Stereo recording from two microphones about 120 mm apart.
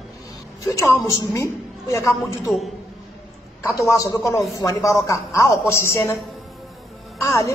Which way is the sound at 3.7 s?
25° left (ahead or behind).